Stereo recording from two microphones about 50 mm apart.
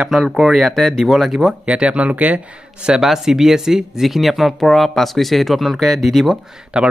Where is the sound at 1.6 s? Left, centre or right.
Right.